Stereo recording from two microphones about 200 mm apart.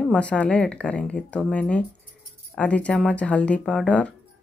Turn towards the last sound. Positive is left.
turn(degrees=5)  # may be behind; listen again after turning